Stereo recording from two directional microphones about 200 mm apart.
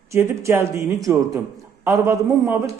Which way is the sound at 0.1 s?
15° right (ahead or behind).